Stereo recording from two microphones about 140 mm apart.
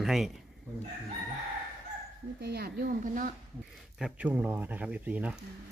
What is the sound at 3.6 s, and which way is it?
Speech, 5° right (ahead or behind).